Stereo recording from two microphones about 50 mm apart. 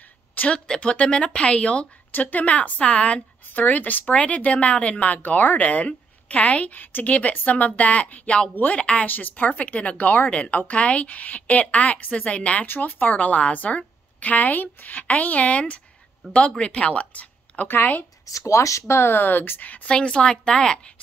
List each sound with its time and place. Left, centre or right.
0.5 s a woman's voice: left
12.6 s a woman's voice: left
17.6 s speech: left
18.3 s speech: left
19.9 s a woman's voice: centre